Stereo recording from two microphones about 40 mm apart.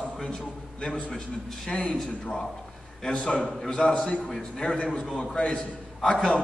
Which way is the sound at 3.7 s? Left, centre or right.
Left.